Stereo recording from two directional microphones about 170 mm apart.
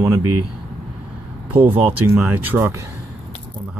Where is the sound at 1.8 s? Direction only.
10° right (ahead or behind).